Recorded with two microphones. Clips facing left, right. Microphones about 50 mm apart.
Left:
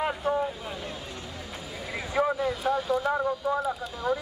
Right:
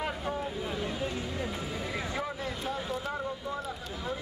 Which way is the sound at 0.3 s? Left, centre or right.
Centre.